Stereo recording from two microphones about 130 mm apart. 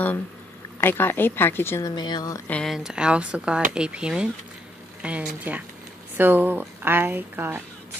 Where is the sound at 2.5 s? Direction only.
10° left (ahead or behind).